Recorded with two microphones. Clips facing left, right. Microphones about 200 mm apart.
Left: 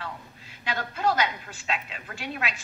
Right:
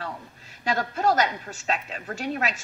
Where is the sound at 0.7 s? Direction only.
40° right (ahead or behind).